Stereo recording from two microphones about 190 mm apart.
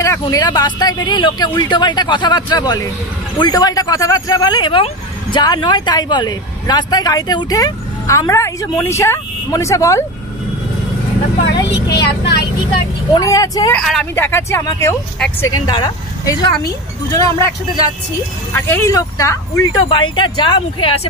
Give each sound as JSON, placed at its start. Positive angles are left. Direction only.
{"t": 0.2, "sound": "speech", "side_deg": 20}
{"t": 11.4, "sound": "speech", "side_deg": 60}
{"t": 13.1, "sound": "speech", "side_deg": 20}
{"t": 13.7, "sound": "speech", "side_deg": 5}
{"t": 14.1, "sound": "speech", "side_deg": 15}
{"t": 18.5, "sound": "speech", "side_deg": 15}